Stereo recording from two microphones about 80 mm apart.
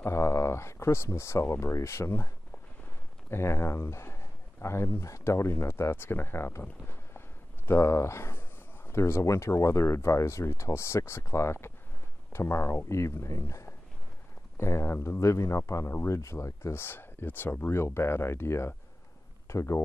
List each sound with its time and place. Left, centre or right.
0.0 s speech: left